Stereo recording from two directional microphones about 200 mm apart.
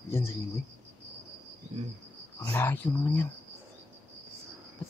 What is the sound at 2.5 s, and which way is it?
Speech, 10° left (ahead or behind).